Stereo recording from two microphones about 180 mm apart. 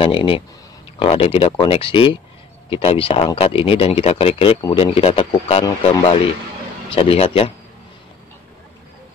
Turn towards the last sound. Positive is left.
turn(degrees=30)  # may be behind; listen again after turning